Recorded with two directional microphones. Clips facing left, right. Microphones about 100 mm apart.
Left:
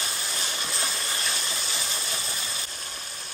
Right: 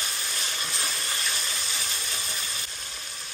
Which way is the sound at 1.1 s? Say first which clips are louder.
Left 1 dB; 35° left (ahead or behind).